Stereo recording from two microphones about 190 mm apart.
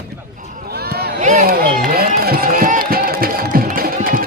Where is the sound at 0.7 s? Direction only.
55° right (ahead or behind).